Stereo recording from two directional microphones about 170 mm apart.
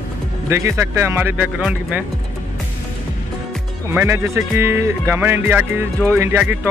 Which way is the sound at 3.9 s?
15° right (ahead or behind).